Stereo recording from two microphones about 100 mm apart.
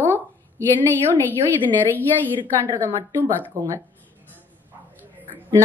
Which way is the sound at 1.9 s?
20° left (ahead or behind).